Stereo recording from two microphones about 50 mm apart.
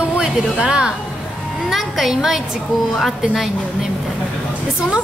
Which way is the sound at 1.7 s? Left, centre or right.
Centre.